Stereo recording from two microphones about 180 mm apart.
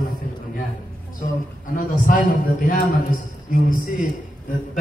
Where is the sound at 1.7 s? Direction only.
50° left (ahead or behind).